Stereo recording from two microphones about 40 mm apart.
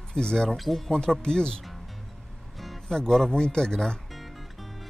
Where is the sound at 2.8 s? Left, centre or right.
Centre.